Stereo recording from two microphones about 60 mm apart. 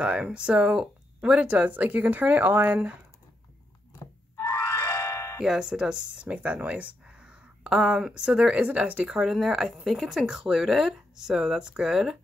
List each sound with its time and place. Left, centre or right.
0.0 s speech: centre
4.0 s music: left
5.4 s speech: centre
9.1 s speech: centre